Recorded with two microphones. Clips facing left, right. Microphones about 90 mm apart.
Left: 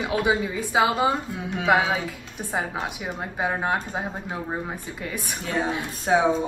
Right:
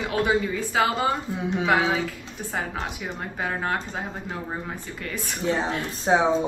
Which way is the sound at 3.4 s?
15° left (ahead or behind).